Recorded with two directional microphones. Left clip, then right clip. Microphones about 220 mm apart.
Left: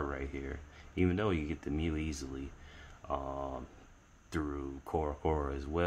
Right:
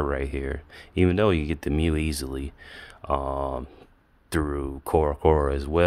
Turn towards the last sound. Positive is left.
turn(degrees=-50)  # may be behind; listen again after turning